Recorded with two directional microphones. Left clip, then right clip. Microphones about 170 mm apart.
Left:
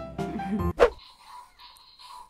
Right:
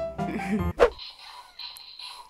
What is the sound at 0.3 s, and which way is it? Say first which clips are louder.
Music: right 2 dB; 20° right (ahead or behind).